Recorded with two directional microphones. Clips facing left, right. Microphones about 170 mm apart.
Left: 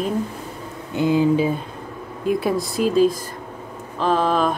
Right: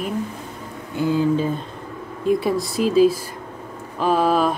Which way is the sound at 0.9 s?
15° left (ahead or behind).